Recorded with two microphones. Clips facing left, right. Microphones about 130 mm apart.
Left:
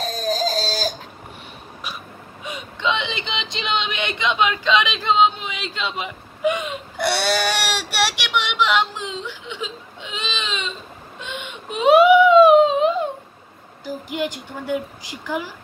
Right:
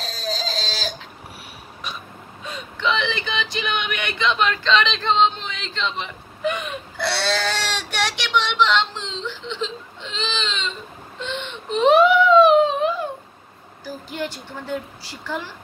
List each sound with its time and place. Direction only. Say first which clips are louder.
0.0 s a sound: left 6 dB; 50° left (ahead or behind)
2.4 s whimper: even; 15° left (ahead or behind)
13.8 s a woman's voice: left 3 dB; 15° left (ahead or behind)